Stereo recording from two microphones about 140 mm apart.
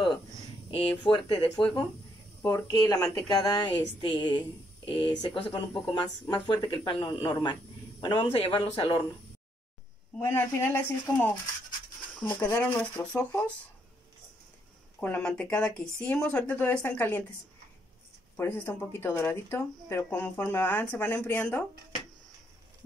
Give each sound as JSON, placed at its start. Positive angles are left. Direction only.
{"t": 0.7, "sound": "speech", "side_deg": 40}
{"t": 2.5, "sound": "speech", "side_deg": 25}
{"t": 10.2, "sound": "speech", "side_deg": 15}
{"t": 15.0, "sound": "speech", "side_deg": 10}
{"t": 18.3, "sound": "speech", "side_deg": 15}